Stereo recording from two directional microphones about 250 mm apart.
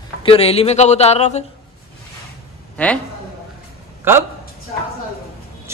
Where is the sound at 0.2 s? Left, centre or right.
Left.